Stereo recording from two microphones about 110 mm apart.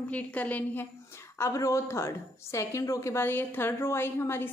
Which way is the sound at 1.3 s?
25° left (ahead or behind).